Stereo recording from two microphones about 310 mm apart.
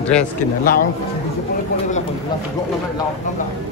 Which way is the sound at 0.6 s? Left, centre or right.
Left.